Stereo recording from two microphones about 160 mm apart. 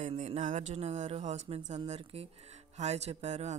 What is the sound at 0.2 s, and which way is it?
Speech, 50° right (ahead or behind).